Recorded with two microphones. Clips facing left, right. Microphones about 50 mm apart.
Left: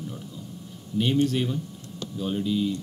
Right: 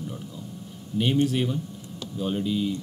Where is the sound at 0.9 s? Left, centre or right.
Centre.